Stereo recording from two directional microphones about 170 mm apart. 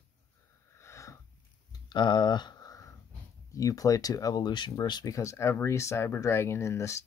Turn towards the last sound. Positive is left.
turn(degrees=15)  # may be behind; listen again after turning